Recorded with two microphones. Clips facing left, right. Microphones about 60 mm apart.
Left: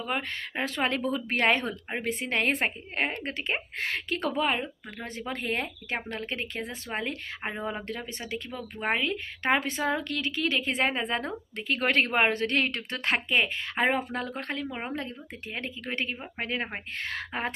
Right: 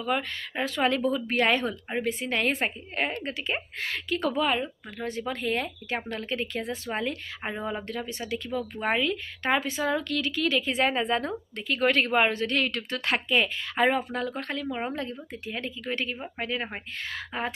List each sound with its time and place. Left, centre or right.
0.0 s a woman's voice: left
2.0 s a woman's voice: left
3.7 s a woman's voice: left; by 7.8 s centre
8.1 s a woman's voice: left